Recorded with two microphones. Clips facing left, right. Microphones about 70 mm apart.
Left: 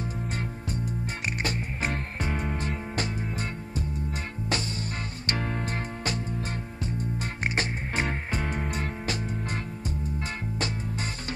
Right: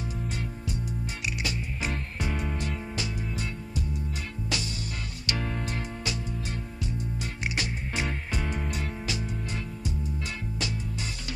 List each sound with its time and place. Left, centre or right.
0.0 s music: left